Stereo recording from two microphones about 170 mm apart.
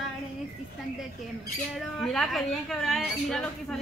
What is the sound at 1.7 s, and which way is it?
A woman's voice, centre (ahead or behind).